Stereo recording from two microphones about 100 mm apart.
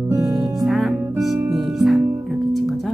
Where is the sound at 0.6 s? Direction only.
5° right (ahead or behind).